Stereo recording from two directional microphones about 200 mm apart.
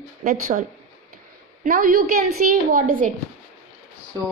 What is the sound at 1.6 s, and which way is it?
Speech, 45° right (ahead or behind).